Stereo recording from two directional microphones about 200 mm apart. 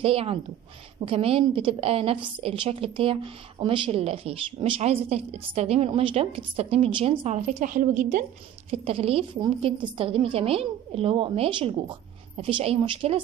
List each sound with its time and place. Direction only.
0.0 s a woman's voice: 30° right (ahead or behind)